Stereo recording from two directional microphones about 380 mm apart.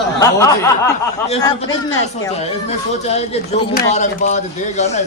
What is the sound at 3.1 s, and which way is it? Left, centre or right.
Speech, centre.